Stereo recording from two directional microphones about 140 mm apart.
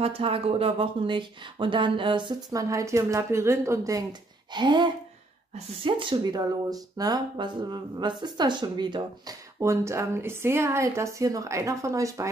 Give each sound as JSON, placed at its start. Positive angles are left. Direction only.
{"t": 0.0, "sound": "speech", "side_deg": -40}
{"t": 4.5, "sound": "speech", "side_deg": -35}